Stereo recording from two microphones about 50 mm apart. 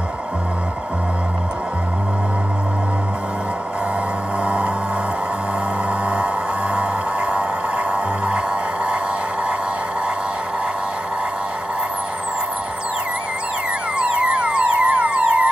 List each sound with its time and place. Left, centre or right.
6.0 s music: right
13.9 s music: right